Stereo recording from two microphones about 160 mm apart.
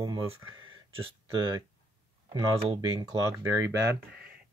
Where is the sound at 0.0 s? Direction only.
25° right (ahead or behind).